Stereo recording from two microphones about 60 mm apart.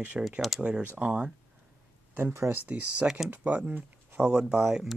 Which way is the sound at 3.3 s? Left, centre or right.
Right.